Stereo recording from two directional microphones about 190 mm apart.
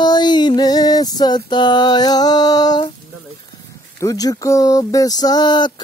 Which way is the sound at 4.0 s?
20° left (ahead or behind).